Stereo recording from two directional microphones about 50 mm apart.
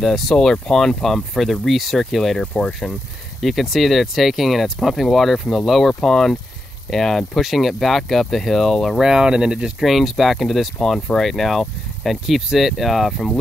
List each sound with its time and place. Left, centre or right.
0.0 s speech: centre
2.3 s speech: centre
3.4 s speech: centre
9.0 s speech: centre
9.8 s speech: centre